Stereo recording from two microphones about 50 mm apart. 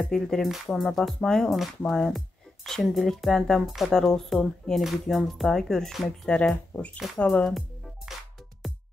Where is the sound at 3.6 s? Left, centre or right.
Centre.